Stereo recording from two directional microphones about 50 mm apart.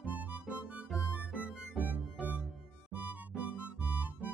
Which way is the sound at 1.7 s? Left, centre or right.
Right.